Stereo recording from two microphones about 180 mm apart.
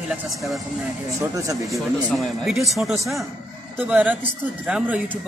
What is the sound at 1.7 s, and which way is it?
Speech, centre (ahead or behind).